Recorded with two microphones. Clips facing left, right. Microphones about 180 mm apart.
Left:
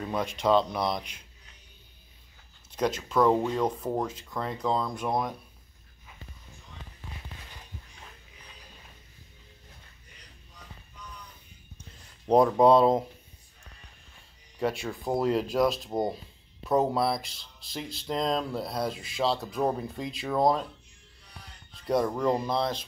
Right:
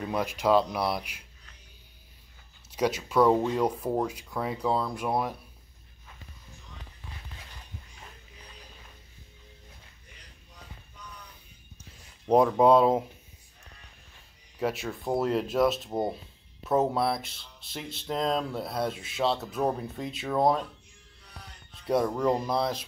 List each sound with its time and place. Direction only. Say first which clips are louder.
0.0 s speech: even; 5° right (ahead or behind)
2.7 s speech: right 1 dB; 10° right (ahead or behind)
11.8 s a sound: even; 5° right (ahead or behind)
14.6 s speech: left 1 dB; centre (ahead or behind)
21.8 s speech: even; 5° right (ahead or behind)